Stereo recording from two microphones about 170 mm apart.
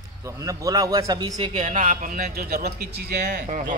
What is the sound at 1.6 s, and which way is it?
A man's voice, 45° right (ahead or behind).